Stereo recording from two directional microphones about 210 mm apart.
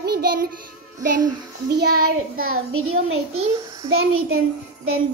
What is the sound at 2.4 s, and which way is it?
Speech, 85° right.